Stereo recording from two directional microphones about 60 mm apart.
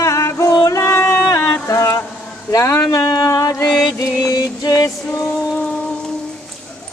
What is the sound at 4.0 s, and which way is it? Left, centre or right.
Music, left.